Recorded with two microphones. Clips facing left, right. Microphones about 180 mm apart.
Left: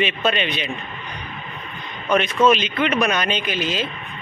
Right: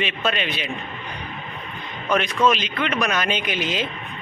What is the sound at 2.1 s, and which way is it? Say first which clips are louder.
A man's voice: left 3 dB; centre (ahead or behind).